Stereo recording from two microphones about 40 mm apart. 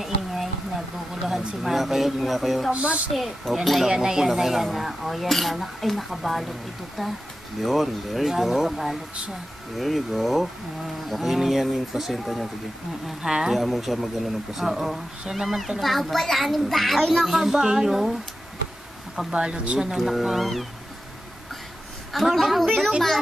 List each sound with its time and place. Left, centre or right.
0.0 s a sound: centre
1.6 s speech: centre
2.7 s a woman's voice: right
3.1 s speech: centre
3.9 s speech: centre
17.4 s speech: centre
19.3 s speech: right
20.0 s speech: centre
22.1 s speech: centre